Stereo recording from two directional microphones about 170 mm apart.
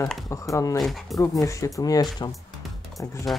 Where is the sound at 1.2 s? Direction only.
20° left (ahead or behind).